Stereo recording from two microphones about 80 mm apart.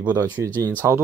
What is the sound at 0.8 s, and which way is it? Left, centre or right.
Speech, right.